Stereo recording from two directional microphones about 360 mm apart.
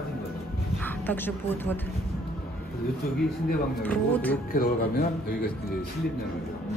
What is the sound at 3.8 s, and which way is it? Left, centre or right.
Speech, centre.